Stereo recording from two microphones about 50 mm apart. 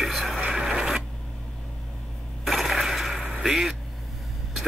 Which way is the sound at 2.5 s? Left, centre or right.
Centre.